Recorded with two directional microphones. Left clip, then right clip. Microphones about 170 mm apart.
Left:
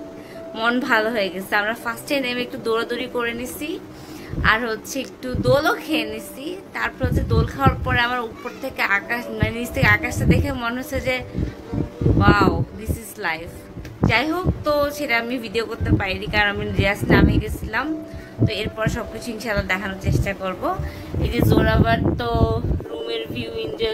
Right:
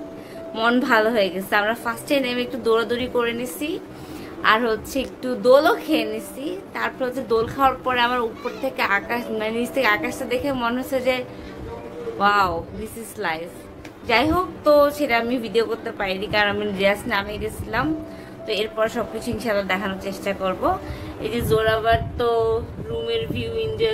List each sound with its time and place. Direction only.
0.6 s a woman's voice: 10° right (ahead or behind)
21.2 s speech: 15° left (ahead or behind)
23.0 s music: 25° left (ahead or behind)